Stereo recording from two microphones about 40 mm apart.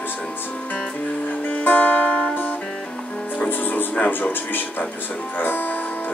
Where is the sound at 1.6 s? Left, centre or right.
Left.